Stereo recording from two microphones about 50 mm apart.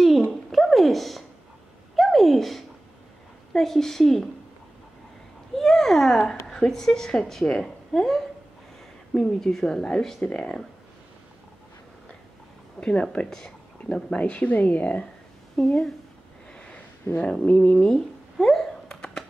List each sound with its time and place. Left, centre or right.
0.5 s cat: centre
2.0 s a sound: centre
3.5 s a woman's voice: centre
5.6 s a child's voice: centre
9.8 s a woman's voice: centre
12.8 s a woman's voice: centre
13.3 s a sound: centre
14.1 s a woman's voice: left
15.5 s speech: centre
16.5 s a sound: left
17.5 s a woman's voice: left
17.7 s a sound: centre